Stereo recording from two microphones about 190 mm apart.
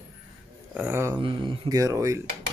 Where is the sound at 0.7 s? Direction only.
10° right (ahead or behind).